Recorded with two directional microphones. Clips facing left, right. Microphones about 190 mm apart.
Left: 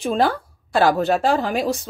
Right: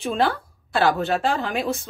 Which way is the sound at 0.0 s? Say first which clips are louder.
Left 3 dB; 35° left (ahead or behind).